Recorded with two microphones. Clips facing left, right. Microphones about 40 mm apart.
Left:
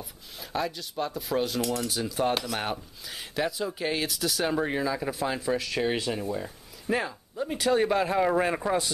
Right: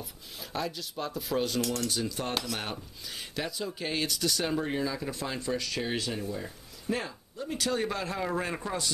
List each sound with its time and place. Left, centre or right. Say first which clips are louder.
0.0 s speech: left 1 dB; centre